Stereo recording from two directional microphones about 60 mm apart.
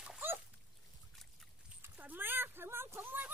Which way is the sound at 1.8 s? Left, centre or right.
Right.